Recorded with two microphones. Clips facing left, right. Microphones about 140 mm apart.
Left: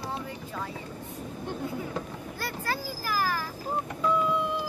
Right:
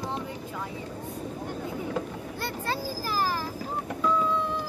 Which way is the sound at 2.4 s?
25° right (ahead or behind).